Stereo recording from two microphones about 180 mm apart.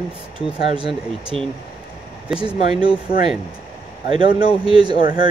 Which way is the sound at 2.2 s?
5° right (ahead or behind).